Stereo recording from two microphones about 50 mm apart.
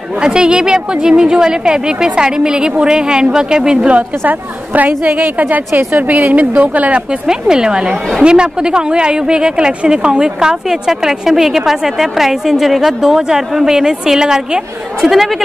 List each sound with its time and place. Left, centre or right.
0.2 s speech: centre
4.2 s a woman's voice: right
7.1 s speech: centre